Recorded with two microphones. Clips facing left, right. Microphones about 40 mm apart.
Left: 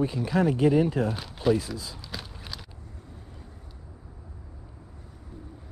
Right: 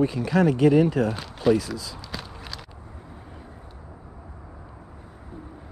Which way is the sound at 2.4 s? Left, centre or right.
Centre.